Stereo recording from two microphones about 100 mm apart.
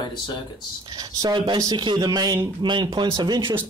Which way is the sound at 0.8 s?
45° right (ahead or behind).